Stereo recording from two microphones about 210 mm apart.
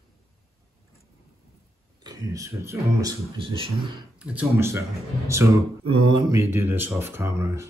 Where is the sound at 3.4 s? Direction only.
25° right (ahead or behind).